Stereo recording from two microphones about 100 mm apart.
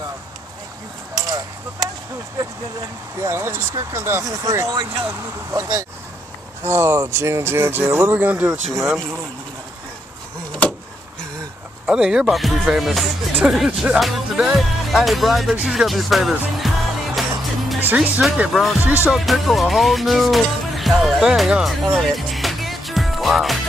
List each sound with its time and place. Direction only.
1.2 s a sound: 40° right (ahead or behind)
3.2 s speech: 25° right (ahead or behind)
8.6 s music: centre (ahead or behind)
11.8 s music: 5° right (ahead or behind)
13.4 s speech: 10° right (ahead or behind)
14.0 s music: centre (ahead or behind)
17.7 s speech: 15° right (ahead or behind)
18.5 s music: centre (ahead or behind)
18.9 s speech: 15° right (ahead or behind)
19.1 s music: centre (ahead or behind)